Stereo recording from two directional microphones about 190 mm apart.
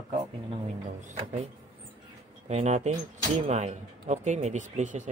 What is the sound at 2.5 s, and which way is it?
Speech, 35° right (ahead or behind).